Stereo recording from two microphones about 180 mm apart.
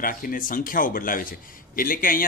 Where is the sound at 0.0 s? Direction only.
50° left (ahead or behind).